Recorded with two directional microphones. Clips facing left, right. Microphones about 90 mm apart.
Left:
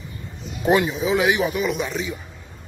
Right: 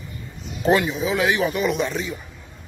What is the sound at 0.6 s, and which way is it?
Speech, 20° left (ahead or behind).